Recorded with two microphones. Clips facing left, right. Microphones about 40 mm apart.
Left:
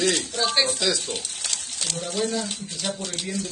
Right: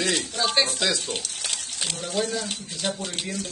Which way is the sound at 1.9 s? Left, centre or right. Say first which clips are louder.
Left 1 dB; centre.